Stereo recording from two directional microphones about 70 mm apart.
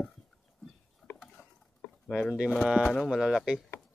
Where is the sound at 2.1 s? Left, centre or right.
Centre.